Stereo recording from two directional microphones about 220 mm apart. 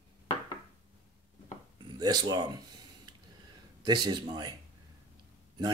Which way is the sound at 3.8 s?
20° right (ahead or behind).